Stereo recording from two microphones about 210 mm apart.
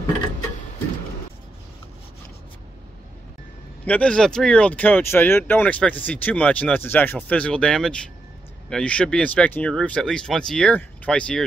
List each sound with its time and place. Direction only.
3.8 s speech: 5° left (ahead or behind)